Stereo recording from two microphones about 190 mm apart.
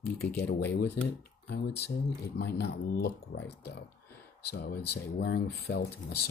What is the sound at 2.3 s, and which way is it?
Speech, 60° left (ahead or behind).